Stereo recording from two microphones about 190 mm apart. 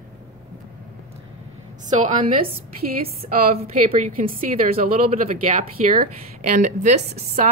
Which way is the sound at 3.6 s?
35° right (ahead or behind).